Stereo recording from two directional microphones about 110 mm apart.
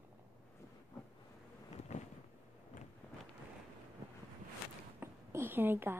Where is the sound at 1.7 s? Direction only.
90° left.